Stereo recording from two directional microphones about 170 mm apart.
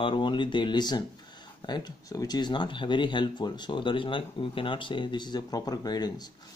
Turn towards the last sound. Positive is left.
turn(degrees=25)  # may be behind; listen again after turning